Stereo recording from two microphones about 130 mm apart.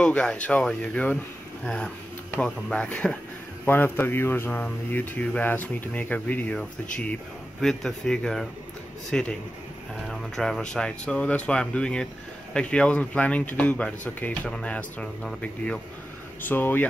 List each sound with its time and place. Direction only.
0.0 s speech: 5° left (ahead or behind)